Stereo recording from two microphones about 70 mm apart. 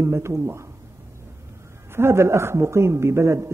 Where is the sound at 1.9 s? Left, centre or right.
Right.